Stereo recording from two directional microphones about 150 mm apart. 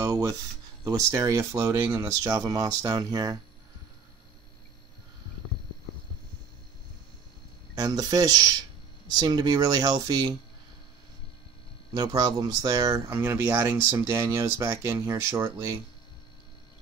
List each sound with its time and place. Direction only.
0.0 s speech: 20° right (ahead or behind)
7.7 s speech: 25° right (ahead or behind)
11.9 s speech: 25° right (ahead or behind)